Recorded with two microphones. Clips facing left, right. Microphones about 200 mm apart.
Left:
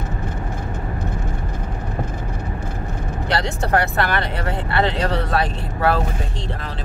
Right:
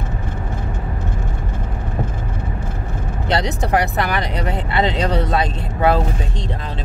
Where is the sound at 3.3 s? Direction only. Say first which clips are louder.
Right 2 dB; 20° right (ahead or behind).